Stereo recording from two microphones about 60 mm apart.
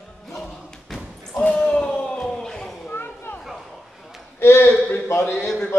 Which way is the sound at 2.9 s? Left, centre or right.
Left.